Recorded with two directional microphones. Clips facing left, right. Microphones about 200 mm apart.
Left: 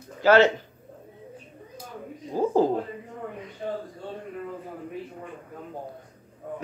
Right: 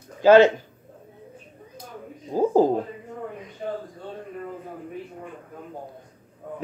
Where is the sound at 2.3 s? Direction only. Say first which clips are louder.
Right 3 dB; 15° right (ahead or behind).